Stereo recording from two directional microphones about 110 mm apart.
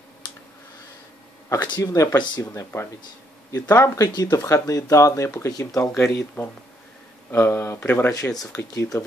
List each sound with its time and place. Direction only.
1.5 s speech: 35° left (ahead or behind)
5.9 s speech: 20° left (ahead or behind)
8.1 s speech: 35° left (ahead or behind)